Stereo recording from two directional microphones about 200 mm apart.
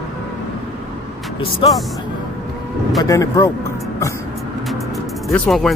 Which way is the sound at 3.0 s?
15° left (ahead or behind).